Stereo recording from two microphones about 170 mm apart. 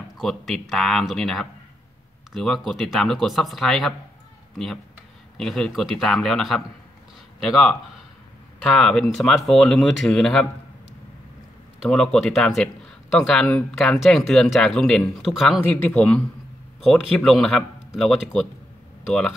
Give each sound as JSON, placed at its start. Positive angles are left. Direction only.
{"t": 0.2, "sound": "speech", "side_deg": 0}
{"t": 5.4, "sound": "speech", "side_deg": 0}
{"t": 8.7, "sound": "speech", "side_deg": 5}
{"t": 11.8, "sound": "speech", "side_deg": 5}
{"t": 15.6, "sound": "speech", "side_deg": 10}